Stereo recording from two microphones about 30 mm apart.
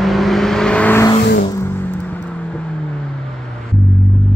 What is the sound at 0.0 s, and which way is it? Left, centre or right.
Vehicle, centre.